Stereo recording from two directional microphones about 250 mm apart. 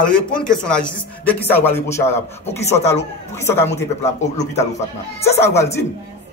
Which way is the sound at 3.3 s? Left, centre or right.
Centre.